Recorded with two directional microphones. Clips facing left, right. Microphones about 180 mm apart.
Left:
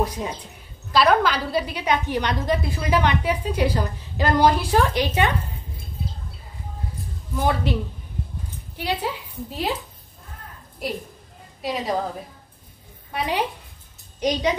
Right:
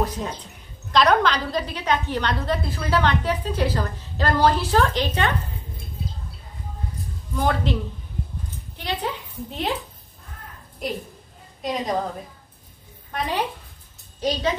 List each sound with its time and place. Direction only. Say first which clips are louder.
0.0 s a woman's voice: left 1 dB; 10° left (ahead or behind)
7.3 s a woman's voice: even; 10° left (ahead or behind)
10.8 s a woman's voice: even; 5° left (ahead or behind)
13.1 s a woman's voice: left 1 dB; 10° left (ahead or behind)